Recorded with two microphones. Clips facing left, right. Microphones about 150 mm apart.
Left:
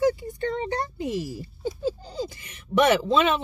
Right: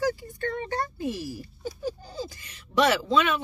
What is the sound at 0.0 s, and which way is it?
A child's voice, 20° left (ahead or behind).